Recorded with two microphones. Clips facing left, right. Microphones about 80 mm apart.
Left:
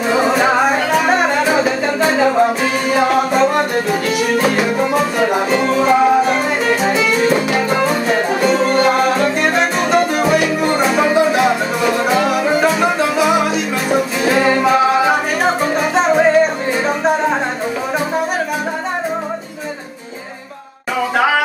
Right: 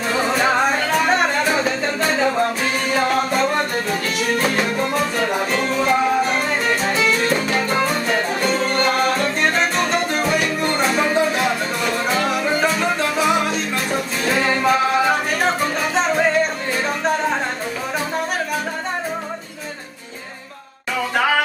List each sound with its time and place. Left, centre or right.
0.1 s music: centre